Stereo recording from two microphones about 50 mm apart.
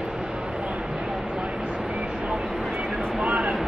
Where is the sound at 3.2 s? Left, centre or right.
Right.